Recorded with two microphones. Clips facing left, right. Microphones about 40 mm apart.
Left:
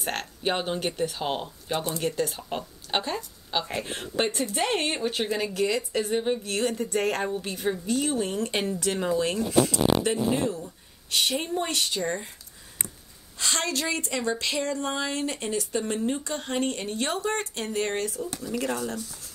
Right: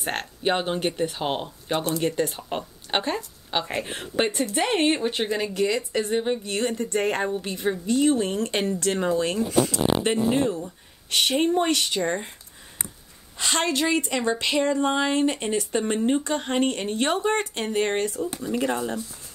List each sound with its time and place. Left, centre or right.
0.0 s speech: centre
3.6 s speech: centre
5.3 s speech: centre
8.4 s speech: centre
10.0 s speech: right
13.4 s speech: right
18.2 s speech: right